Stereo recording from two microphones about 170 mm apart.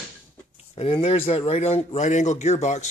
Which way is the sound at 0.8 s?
35° left (ahead or behind).